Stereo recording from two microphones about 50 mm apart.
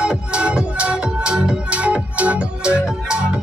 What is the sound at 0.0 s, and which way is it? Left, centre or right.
Music, centre.